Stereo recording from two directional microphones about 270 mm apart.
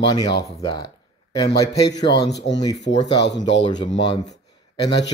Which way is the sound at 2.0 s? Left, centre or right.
Left.